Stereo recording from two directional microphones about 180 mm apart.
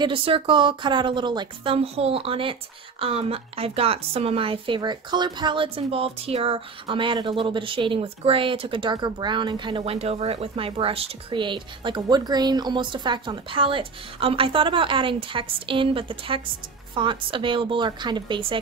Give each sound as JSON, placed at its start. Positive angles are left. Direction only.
{"t": 0.0, "sound": "a woman's voice", "side_deg": -30}